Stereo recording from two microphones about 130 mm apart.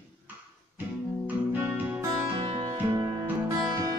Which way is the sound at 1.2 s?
15° right (ahead or behind).